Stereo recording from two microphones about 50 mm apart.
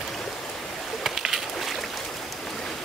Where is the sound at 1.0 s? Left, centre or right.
Centre.